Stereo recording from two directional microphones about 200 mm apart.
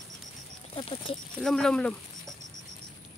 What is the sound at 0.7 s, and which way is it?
Speech, 25° left (ahead or behind).